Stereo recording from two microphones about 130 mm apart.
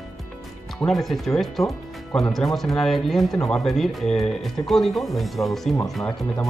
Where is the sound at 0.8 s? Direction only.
Centre (ahead or behind).